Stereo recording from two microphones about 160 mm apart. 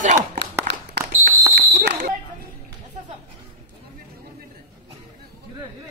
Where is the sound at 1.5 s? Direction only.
90° right.